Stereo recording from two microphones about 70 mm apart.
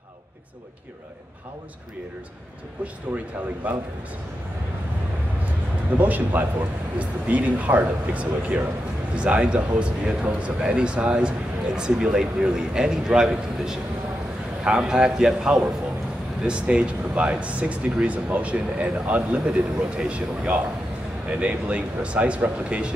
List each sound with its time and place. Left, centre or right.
3.6 s speech: right
5.4 s a man's voice: right